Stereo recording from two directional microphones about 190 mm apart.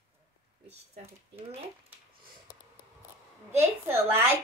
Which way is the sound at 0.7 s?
30° right (ahead or behind).